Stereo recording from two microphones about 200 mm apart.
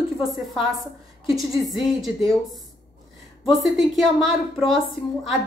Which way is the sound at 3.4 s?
Centre (ahead or behind).